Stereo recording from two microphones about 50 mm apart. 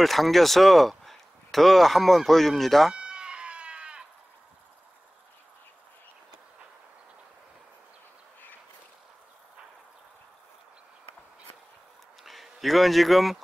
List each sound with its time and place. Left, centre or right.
0.0 s speech: centre
2.9 s chicken: centre
12.2 s speech: centre